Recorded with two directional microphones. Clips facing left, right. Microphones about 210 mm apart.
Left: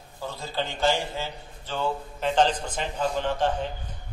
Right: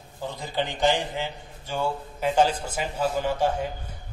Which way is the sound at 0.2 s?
15° right (ahead or behind).